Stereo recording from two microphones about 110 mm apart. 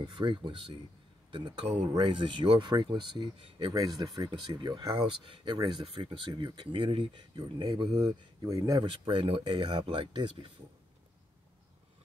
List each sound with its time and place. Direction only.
0.0 s speech: 45° right (ahead or behind)
8.4 s speech: 30° right (ahead or behind)
8.8 s speech: 50° right (ahead or behind)